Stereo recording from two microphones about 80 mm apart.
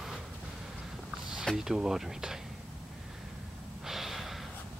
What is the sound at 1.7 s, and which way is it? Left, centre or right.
Speech, centre.